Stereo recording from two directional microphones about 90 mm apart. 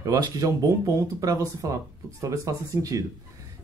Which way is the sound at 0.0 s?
45° right (ahead or behind).